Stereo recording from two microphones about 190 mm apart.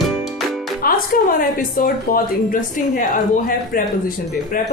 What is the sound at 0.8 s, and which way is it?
A woman's voice, 50° left (ahead or behind).